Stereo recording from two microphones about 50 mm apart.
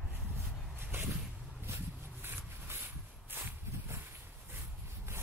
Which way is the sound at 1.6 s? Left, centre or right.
Right.